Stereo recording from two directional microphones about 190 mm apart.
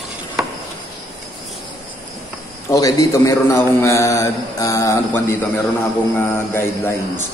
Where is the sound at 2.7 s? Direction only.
20° left (ahead or behind).